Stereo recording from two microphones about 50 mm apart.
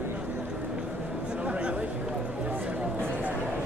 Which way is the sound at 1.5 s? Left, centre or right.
Right.